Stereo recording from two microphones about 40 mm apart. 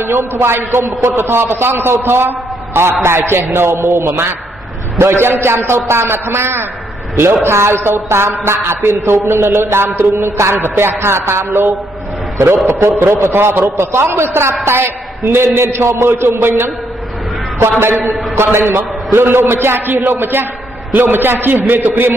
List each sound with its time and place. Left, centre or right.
0.0 s a man's voice: right
5.0 s a man's voice: right
5.7 s a sound: right
12.6 s a man's voice: right
17.6 s a sound: right
18.3 s a man's voice: right
18.7 s a man's voice: right